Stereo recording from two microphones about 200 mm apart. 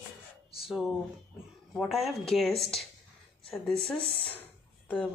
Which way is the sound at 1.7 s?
Centre (ahead or behind).